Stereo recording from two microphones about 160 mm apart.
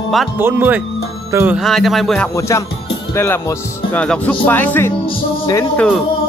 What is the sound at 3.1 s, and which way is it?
Speech, 15° left (ahead or behind).